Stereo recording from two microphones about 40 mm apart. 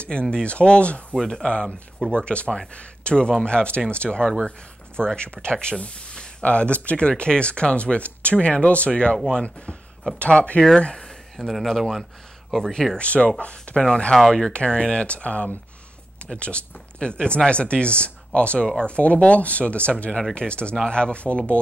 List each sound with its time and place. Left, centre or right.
0.0 s speech: left
1.1 s speech: centre
5.8 s a sound: left
6.4 s speech: left
8.9 s speech: left
11.0 s speech: centre
12.9 s speech: left